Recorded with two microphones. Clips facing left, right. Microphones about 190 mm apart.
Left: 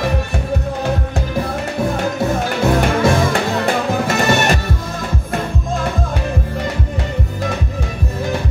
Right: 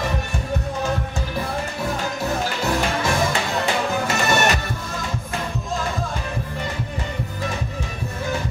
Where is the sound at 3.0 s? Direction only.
55° left (ahead or behind).